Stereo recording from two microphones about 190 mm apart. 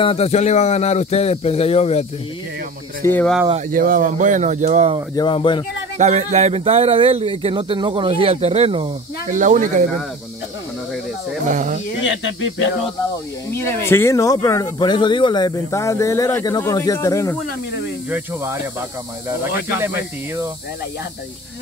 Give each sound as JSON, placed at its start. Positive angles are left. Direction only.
{"t": 0.0, "sound": "speech", "side_deg": 30}
{"t": 3.0, "sound": "speech", "side_deg": 10}
{"t": 3.7, "sound": "speech", "side_deg": -45}
{"t": 5.1, "sound": "speech", "side_deg": 25}
{"t": 5.9, "sound": "speech", "side_deg": -35}
{"t": 9.3, "sound": "speech", "side_deg": -40}
{"t": 11.4, "sound": "speech", "side_deg": -40}
{"t": 12.0, "sound": "speech", "side_deg": 75}
{"t": 13.5, "sound": "speech", "side_deg": 15}
{"t": 18.1, "sound": "speech", "side_deg": -15}
{"t": 19.8, "sound": "speech", "side_deg": -10}